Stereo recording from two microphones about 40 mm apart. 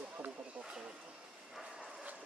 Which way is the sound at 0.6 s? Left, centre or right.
Right.